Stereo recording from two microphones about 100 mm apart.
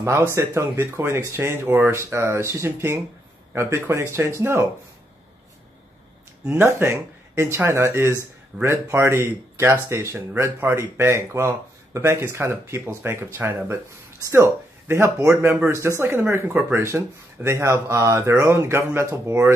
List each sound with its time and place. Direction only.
0.0 s speech: 30° right (ahead or behind)
6.5 s speech: 25° right (ahead or behind)